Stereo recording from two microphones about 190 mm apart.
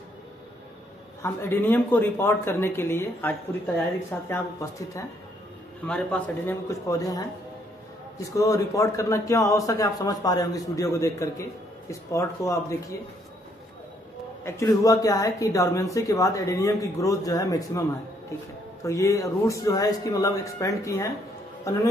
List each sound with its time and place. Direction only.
1.2 s speech: 10° left (ahead or behind)
14.4 s speech: 15° left (ahead or behind)